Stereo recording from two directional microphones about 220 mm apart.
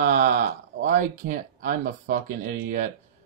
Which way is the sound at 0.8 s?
40° right (ahead or behind).